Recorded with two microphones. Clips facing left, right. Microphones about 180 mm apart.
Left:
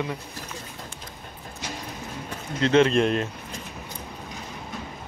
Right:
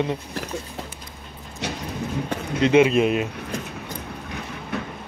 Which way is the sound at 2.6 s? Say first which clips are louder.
Right 3 dB; 10° right (ahead or behind).